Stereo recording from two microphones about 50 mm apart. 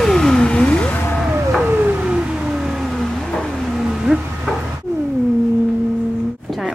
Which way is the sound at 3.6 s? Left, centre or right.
Centre.